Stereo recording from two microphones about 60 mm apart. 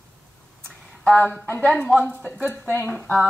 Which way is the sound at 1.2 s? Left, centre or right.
Left.